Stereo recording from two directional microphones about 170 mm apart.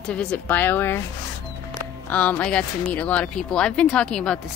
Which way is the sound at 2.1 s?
10° left (ahead or behind).